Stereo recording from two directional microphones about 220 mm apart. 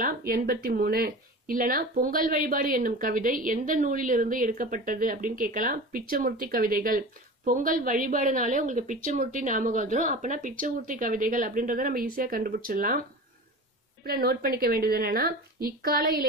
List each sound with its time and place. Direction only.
0.0 s speech: 40° right (ahead or behind)
14.0 s a woman's voice: 45° right (ahead or behind)